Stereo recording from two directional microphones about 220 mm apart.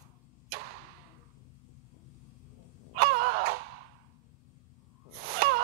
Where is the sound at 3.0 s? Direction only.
40° right (ahead or behind).